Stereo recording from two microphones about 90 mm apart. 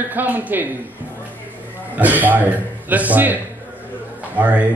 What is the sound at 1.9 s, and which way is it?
A man's voice, 20° right (ahead or behind).